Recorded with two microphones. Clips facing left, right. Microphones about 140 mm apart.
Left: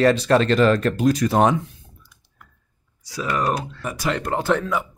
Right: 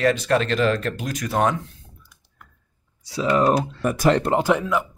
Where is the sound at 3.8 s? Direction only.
50° right (ahead or behind).